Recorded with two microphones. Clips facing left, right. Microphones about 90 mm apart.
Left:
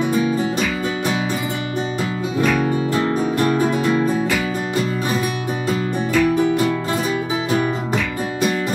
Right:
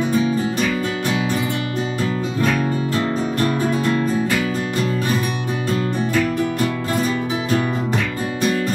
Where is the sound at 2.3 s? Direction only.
15° left (ahead or behind).